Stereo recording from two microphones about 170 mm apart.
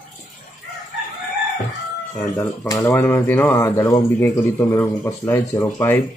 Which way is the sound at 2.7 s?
15° left (ahead or behind).